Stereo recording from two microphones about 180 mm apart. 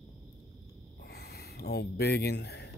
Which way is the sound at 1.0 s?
60° left (ahead or behind).